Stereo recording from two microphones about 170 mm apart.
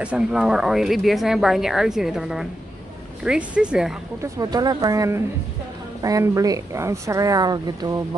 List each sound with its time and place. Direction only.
0.0 s speech: 5° right (ahead or behind)
4.2 s a woman's voice: 20° right (ahead or behind)